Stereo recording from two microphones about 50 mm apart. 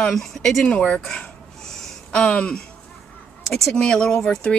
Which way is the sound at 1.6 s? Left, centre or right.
Centre.